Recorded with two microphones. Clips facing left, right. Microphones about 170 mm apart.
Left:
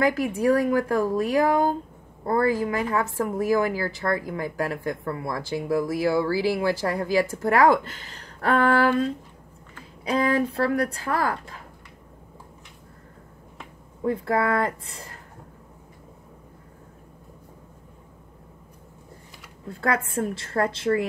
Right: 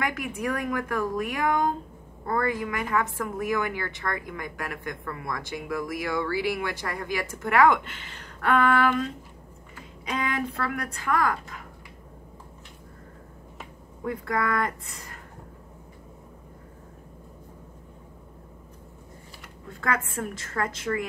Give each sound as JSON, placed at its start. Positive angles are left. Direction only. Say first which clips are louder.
{"t": 0.0, "sound": "a woman's voice", "louder": "left 8 dB", "side_deg": 35}
{"t": 10.0, "sound": "a woman's voice", "louder": "left 7 dB", "side_deg": 35}
{"t": 14.0, "sound": "speech", "louder": "left 5 dB", "side_deg": 30}
{"t": 19.7, "sound": "a woman's voice", "louder": "left 4 dB", "side_deg": 35}